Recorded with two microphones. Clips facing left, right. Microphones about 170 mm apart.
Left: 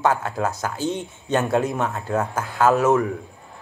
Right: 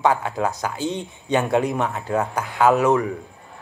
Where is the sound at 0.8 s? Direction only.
15° right (ahead or behind).